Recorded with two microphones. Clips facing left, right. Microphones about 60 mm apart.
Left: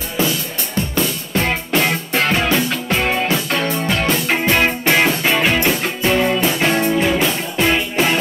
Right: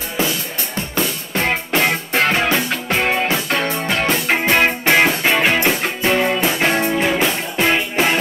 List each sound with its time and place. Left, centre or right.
0.2 s music: centre